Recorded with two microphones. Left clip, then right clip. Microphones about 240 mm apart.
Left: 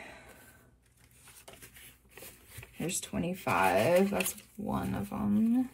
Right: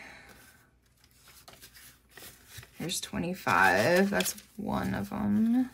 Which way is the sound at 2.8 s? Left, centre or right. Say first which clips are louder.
Right 1 dB; centre.